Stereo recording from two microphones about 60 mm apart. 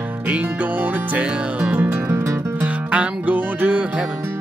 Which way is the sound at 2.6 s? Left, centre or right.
Right.